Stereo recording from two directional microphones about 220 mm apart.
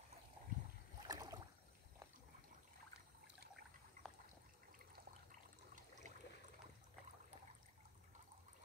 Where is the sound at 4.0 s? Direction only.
40° right (ahead or behind).